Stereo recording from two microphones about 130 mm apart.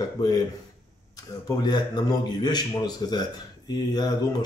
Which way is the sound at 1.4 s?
30° left (ahead or behind).